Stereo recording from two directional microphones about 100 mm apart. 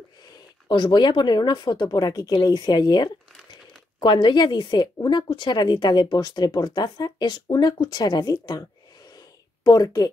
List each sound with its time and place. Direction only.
0.7 s a woman's voice: 50° left (ahead or behind)
9.7 s speech: 40° left (ahead or behind)